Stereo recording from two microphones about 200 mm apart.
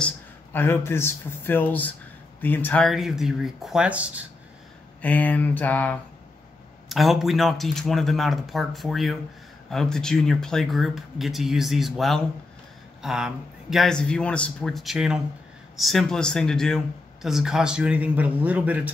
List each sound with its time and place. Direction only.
0.0 s speech: 10° left (ahead or behind); by 4.2 s 5° right (ahead or behind)
5.0 s a sound: 5° left (ahead or behind)
6.9 s speech: centre (ahead or behind)